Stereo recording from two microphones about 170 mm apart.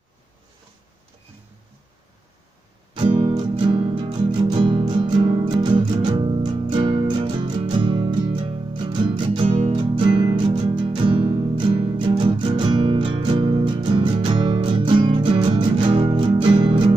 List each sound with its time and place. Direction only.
2.9 s music: 30° right (ahead or behind)